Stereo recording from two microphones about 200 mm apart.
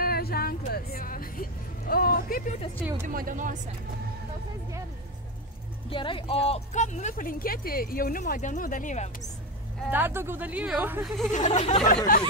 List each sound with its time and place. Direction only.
0.0 s speech: 50° left (ahead or behind)
3.1 s speech: 45° right (ahead or behind)
5.9 s speech: 25° left (ahead or behind)
9.8 s speech: 10° right (ahead or behind)
11.3 s speech: 35° left (ahead or behind)